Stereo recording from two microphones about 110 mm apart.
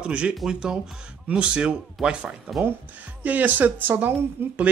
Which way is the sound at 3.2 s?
15° right (ahead or behind).